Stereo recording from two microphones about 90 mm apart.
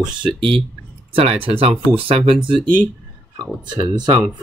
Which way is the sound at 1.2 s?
90° right.